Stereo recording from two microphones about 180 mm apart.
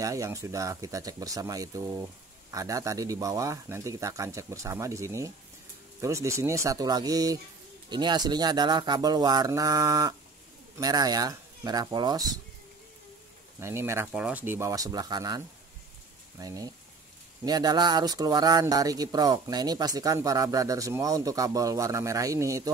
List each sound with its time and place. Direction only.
0.0 s speech: 15° right (ahead or behind)
13.6 s speech: 15° right (ahead or behind)